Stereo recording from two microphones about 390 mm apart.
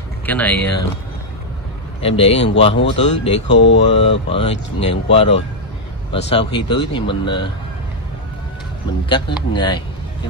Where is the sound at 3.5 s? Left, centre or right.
Left.